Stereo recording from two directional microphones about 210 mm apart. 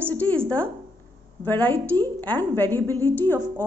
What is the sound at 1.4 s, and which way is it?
A woman's voice, 10° left (ahead or behind).